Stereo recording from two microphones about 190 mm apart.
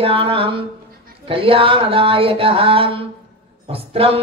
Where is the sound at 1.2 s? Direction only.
30° right (ahead or behind).